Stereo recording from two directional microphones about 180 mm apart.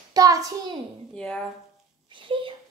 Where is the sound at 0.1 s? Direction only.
20° right (ahead or behind).